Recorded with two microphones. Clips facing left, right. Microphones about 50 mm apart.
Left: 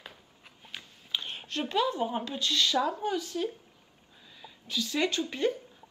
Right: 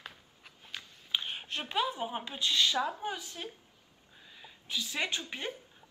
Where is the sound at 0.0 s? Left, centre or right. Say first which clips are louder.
Even; centre.